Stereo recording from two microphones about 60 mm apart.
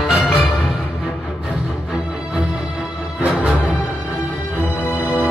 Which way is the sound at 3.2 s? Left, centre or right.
Centre.